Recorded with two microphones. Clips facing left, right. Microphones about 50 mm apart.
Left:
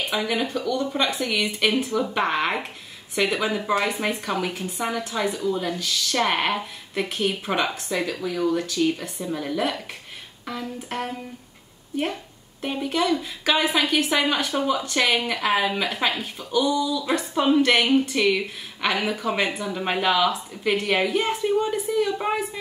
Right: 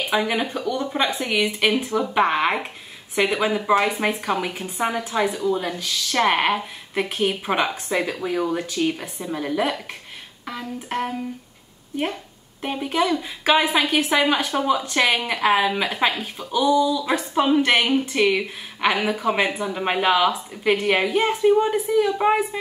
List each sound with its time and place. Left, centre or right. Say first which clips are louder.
0.1 s speech: right 4 dB; centre
12.6 s speech: right 1 dB; centre